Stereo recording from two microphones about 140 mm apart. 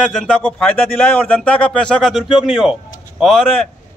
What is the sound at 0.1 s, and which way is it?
Speech, 5° left (ahead or behind).